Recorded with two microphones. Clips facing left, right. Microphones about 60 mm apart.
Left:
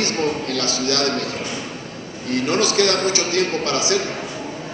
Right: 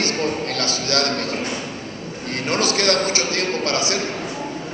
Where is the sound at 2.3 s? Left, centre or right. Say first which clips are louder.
Left 3 dB; right.